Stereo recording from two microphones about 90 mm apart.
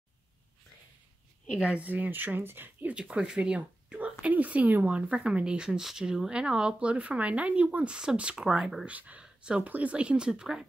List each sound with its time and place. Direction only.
1.6 s speech: 15° right (ahead or behind)
2.9 s speech: 10° right (ahead or behind)